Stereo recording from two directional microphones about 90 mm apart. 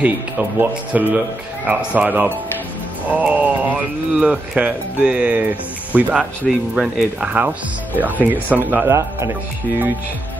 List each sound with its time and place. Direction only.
0.0 s speech: 15° right (ahead or behind)
6.4 s speech: 5° right (ahead or behind)
7.3 s speech: 20° right (ahead or behind)